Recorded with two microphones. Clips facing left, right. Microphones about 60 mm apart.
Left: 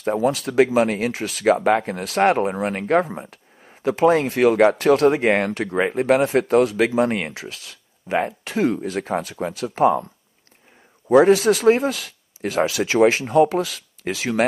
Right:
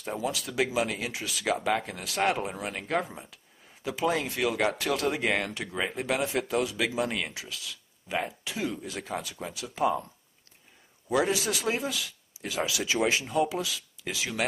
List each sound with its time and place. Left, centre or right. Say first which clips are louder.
0.0 s speech: left 12 dB; left
11.1 s speech: left 13 dB; left